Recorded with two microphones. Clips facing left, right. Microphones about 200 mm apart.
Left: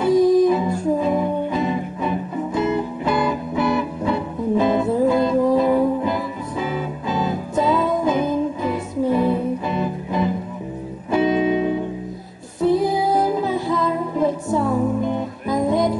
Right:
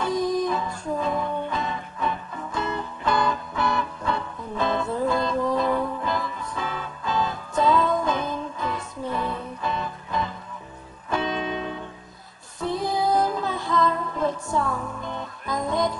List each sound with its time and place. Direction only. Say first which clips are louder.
0.0 s music: left 10 dB; 5° left (ahead or behind)
14.6 s music: left 9 dB; 25° left (ahead or behind)
15.0 s music: left 11 dB; 10° left (ahead or behind)